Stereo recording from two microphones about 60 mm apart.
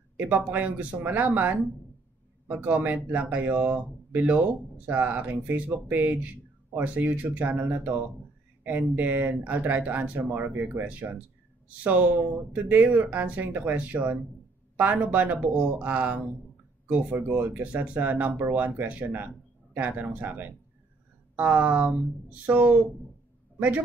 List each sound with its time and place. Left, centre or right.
0.2 s speech: right